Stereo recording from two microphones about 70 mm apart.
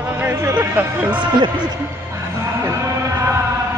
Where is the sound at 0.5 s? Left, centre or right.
Right.